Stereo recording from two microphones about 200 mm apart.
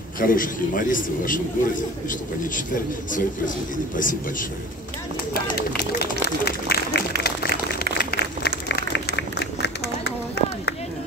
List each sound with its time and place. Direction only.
0.2 s a man's voice: 45° left (ahead or behind)
5.3 s run: 50° left (ahead or behind)
7.8 s applause: 50° left (ahead or behind)
8.6 s run: 60° left (ahead or behind)